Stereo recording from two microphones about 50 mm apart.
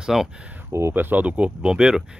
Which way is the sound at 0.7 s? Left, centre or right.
Right.